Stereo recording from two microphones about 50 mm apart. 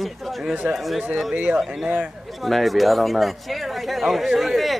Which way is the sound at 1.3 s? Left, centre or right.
Right.